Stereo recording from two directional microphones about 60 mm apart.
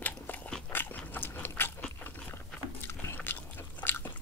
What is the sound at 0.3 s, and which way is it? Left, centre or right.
Dog, left.